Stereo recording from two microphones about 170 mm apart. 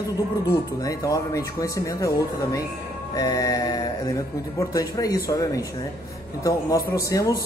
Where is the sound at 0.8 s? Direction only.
20° left (ahead or behind).